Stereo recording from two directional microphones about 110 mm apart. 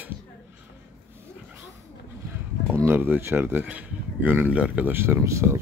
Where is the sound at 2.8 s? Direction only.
20° right (ahead or behind).